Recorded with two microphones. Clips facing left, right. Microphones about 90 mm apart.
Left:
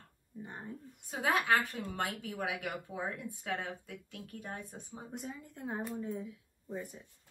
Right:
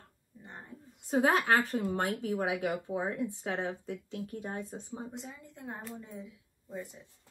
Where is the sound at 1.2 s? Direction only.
40° right (ahead or behind).